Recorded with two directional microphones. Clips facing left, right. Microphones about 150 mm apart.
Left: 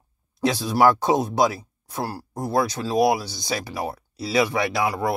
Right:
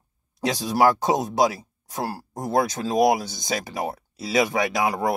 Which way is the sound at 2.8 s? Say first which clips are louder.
Right 1 dB; 30° right (ahead or behind).